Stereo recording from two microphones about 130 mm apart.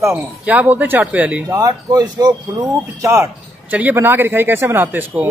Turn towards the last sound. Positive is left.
turn(degrees=-15)  # may be behind; listen again after turning